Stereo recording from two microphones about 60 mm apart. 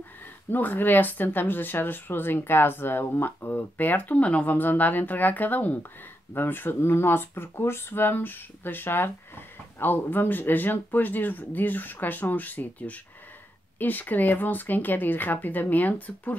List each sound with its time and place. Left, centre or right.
0.5 s speech: left